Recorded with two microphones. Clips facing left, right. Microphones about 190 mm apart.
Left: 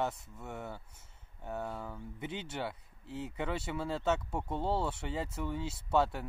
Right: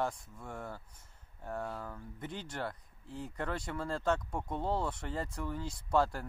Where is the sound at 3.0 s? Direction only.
75° left (ahead or behind).